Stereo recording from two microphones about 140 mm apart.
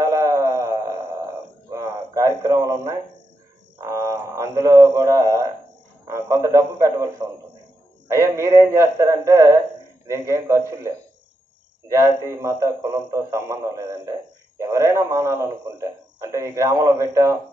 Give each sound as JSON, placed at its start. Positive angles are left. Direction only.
{"t": 0.0, "sound": "a sound", "side_deg": -25}
{"t": 3.7, "sound": "a man's voice", "side_deg": -20}
{"t": 11.9, "sound": "a man's voice", "side_deg": -20}